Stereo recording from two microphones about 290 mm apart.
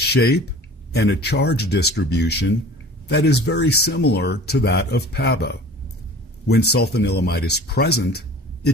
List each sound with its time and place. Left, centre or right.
0.1 s speech: left